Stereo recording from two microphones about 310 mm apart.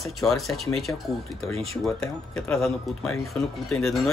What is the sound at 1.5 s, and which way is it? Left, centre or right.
Speech, centre.